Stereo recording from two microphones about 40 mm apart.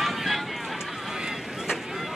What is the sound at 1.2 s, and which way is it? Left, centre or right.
Boat, centre.